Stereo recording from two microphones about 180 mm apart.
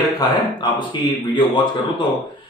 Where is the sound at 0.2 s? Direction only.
25° left (ahead or behind).